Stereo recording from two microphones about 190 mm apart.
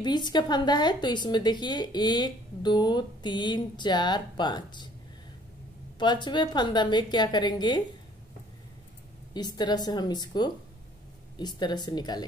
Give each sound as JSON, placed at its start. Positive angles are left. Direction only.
{"t": 0.0, "sound": "a woman's voice", "side_deg": 25}
{"t": 5.9, "sound": "a woman's voice", "side_deg": 25}
{"t": 9.3, "sound": "a woman's voice", "side_deg": 20}